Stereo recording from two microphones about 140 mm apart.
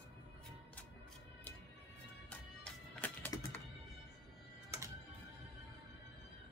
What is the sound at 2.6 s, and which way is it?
Music, 10° left (ahead or behind).